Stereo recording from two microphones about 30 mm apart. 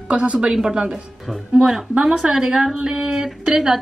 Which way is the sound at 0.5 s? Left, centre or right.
Right.